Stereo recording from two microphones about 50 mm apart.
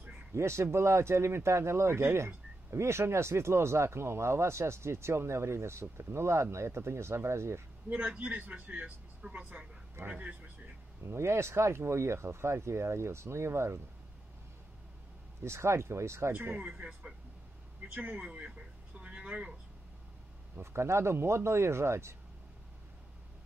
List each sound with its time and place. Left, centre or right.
0.3 s speech: right
7.9 s a man's voice: right
8.8 s a man's voice: right
11.1 s speech: right
15.4 s speech: right
16.3 s a man's voice: right
18.2 s a man's voice: right
18.9 s a sound: right
20.5 s speech: right